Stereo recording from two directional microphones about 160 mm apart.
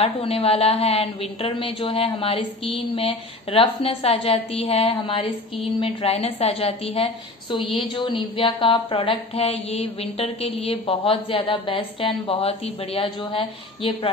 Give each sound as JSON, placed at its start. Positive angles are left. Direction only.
{"t": 0.0, "sound": "speech", "side_deg": 35}
{"t": 1.8, "sound": "speech", "side_deg": 25}